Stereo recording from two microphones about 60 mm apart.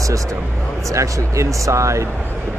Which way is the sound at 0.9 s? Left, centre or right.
Right.